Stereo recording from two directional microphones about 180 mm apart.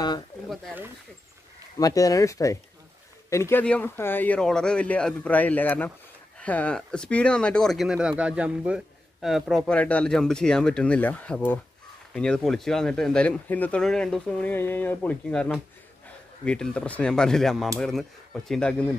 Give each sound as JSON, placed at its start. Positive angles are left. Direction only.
{"t": 1.8, "sound": "speech", "side_deg": 20}